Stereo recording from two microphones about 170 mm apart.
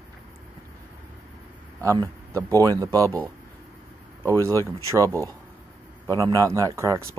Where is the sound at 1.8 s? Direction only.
20° right (ahead or behind).